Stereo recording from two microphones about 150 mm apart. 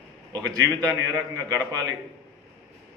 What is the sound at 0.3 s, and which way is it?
A man's voice, 20° right (ahead or behind).